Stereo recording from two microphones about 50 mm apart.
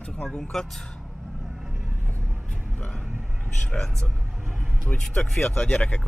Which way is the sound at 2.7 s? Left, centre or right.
Centre.